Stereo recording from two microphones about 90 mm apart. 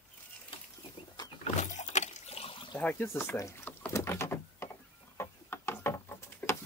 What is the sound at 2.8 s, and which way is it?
Speech, 20° left (ahead or behind).